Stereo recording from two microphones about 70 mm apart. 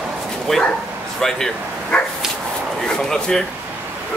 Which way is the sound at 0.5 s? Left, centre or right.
Centre.